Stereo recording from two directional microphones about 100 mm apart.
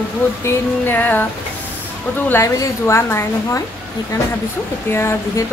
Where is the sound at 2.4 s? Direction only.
30° left (ahead or behind).